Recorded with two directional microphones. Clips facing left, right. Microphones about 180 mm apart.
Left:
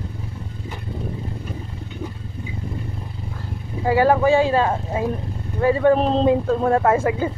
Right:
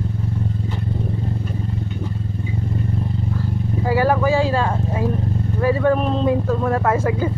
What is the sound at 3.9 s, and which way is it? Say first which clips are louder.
Speech: left 2 dB; 25° left (ahead or behind).